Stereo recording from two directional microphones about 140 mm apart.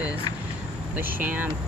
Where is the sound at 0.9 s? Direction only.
10° right (ahead or behind).